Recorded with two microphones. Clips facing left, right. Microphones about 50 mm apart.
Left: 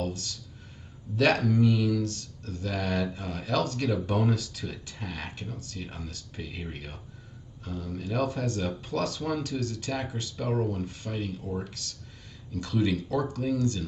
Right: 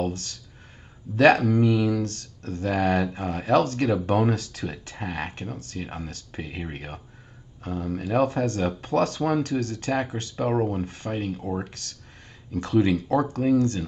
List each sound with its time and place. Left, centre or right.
0.0 s speech: right